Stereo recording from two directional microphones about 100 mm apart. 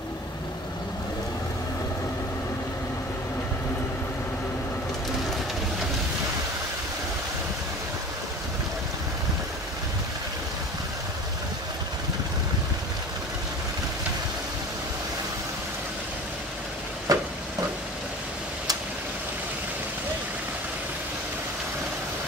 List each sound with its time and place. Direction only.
17.1 s vehicle: 35° right (ahead or behind)